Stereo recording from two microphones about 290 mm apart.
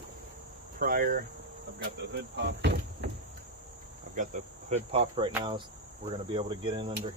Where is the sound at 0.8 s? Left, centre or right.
Right.